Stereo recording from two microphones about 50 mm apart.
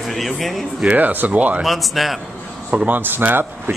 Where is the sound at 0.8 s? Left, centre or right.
Right.